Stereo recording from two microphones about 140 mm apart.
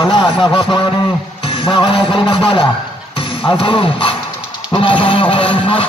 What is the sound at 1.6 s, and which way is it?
Music, 35° left (ahead or behind).